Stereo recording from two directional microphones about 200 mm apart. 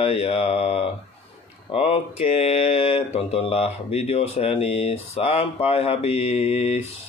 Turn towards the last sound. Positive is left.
turn(degrees=30)  # may be behind; listen again after turning